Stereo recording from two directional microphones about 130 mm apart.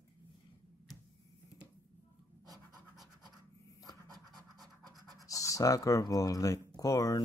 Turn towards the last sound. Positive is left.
turn(degrees=25)  # may be behind; listen again after turning